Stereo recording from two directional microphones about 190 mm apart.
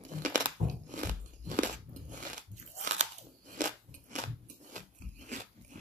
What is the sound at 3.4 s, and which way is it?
Biting, 45° right (ahead or behind).